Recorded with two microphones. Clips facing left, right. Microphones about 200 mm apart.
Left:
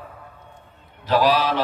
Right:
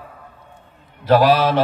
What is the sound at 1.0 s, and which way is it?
Mantra, 50° right (ahead or behind).